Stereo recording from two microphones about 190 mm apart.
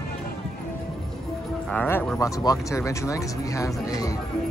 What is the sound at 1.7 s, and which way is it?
Speech, 10° left (ahead or behind).